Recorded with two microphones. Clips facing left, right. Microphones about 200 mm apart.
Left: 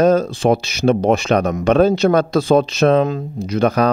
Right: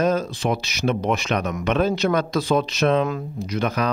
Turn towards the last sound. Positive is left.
turn(degrees=35)  # may be behind; listen again after turning